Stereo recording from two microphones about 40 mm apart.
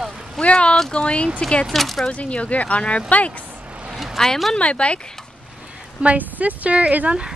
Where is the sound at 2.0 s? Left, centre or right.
Left.